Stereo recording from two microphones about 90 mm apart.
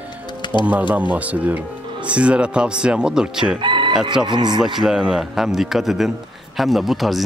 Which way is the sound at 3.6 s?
60° right (ahead or behind).